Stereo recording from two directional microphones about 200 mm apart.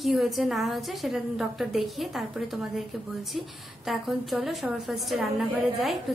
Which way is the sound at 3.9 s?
Centre (ahead or behind).